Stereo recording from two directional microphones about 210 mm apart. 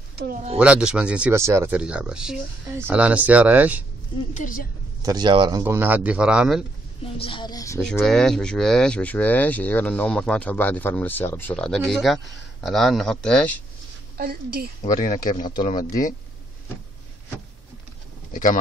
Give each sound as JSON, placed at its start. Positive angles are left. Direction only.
{"t": 0.1, "sound": "a sound", "side_deg": -50}
{"t": 0.6, "sound": "speech", "side_deg": -5}
{"t": 4.3, "sound": "speech", "side_deg": 40}
{"t": 5.0, "sound": "speech", "side_deg": -20}
{"t": 5.6, "sound": "speech", "side_deg": -10}
{"t": 7.2, "sound": "speech", "side_deg": 25}
{"t": 7.8, "sound": "speech", "side_deg": 5}
{"t": 14.1, "sound": "a woman's voice", "side_deg": -45}
{"t": 14.8, "sound": "speech", "side_deg": 40}
{"t": 18.3, "sound": "speech", "side_deg": 40}